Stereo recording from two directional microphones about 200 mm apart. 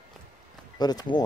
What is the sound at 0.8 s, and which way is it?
Speech, 20° left (ahead or behind).